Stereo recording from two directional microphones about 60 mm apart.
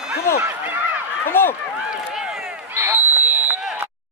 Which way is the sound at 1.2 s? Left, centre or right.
Left.